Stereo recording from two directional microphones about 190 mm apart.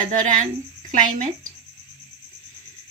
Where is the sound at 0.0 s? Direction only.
40° right (ahead or behind).